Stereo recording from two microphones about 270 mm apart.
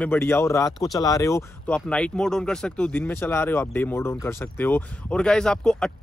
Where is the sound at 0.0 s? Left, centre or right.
Centre.